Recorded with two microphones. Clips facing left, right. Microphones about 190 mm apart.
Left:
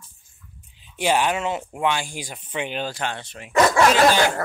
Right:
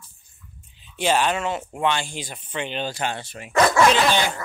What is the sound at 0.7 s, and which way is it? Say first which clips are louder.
Speech: even; 15° left (ahead or behind).